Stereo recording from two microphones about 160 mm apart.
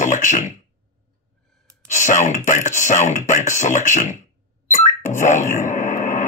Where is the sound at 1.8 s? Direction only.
50° left (ahead or behind).